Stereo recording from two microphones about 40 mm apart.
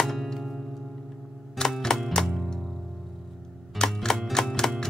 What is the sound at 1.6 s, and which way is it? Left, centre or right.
Music, centre.